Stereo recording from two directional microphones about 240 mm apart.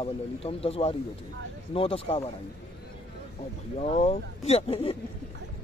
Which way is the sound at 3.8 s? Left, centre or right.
Left.